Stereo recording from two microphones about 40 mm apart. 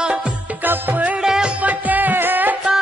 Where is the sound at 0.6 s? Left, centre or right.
Right.